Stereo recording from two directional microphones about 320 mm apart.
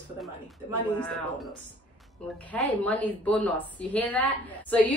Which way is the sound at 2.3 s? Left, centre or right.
Centre.